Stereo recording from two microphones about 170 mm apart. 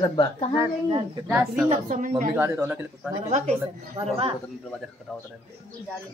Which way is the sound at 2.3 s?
15° right (ahead or behind).